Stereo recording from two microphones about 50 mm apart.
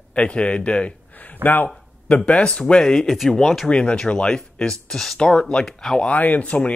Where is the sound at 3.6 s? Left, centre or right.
Left.